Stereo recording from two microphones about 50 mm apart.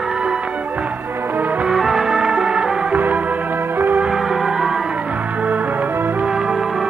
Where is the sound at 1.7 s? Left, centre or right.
Centre.